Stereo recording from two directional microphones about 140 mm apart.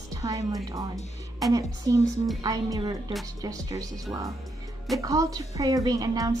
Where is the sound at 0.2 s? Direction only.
25° right (ahead or behind).